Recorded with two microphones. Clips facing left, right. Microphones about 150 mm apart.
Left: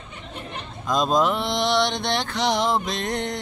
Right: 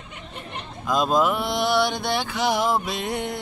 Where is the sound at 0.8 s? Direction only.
5° right (ahead or behind).